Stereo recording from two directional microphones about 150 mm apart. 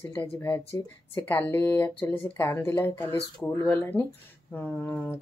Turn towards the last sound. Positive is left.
turn(degrees=15)  # may be behind; listen again after turning